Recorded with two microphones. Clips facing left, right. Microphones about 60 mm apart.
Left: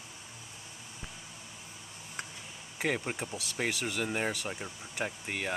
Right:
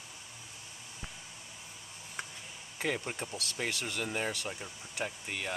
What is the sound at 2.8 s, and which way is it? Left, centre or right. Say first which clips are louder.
Speech: left 2 dB; centre.